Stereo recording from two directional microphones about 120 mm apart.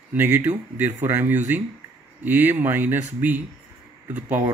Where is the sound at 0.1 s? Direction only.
15° right (ahead or behind).